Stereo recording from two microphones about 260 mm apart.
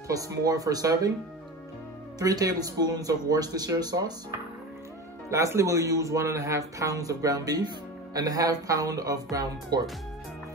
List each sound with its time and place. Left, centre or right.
0.1 s speech: centre
2.1 s speech: centre
5.3 s speech: centre